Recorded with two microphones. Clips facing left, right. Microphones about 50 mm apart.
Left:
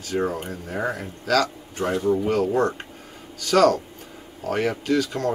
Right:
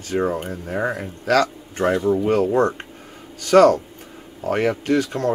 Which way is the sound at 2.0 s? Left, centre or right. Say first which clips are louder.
Right 2 dB; centre.